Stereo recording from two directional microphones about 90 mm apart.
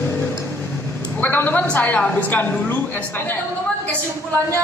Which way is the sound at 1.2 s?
20° left (ahead or behind).